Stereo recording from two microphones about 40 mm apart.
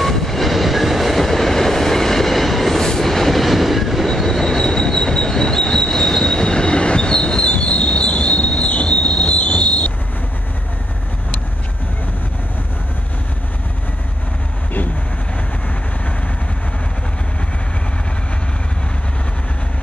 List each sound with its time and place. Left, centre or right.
0.0 s train: centre; by 9.9 s left